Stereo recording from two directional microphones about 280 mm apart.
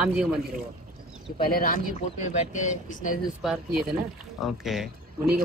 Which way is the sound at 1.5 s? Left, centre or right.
Left.